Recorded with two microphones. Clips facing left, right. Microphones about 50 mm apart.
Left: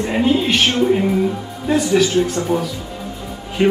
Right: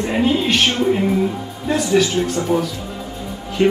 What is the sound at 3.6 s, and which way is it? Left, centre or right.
Speech, centre.